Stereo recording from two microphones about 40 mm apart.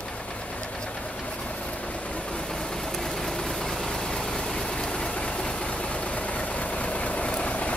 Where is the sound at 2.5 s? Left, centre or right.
Centre.